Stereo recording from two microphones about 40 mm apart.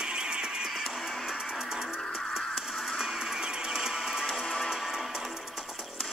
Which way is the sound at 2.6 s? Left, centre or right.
Centre.